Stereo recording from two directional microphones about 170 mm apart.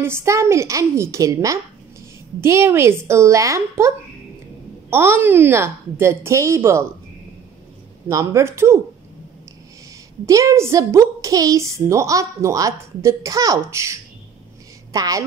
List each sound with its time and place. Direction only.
0.0 s a woman's voice: 15° right (ahead or behind)
8.1 s a woman's voice: 20° right (ahead or behind)
10.2 s a woman's voice: 15° right (ahead or behind)